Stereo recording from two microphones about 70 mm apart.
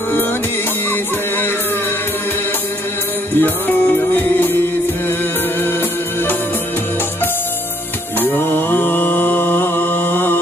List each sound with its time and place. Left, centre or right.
3.3 s music: left
8.2 s music: left